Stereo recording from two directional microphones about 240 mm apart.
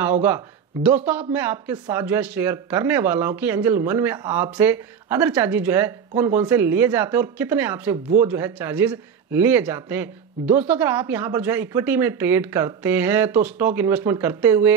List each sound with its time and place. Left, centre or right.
0.0 s speech: centre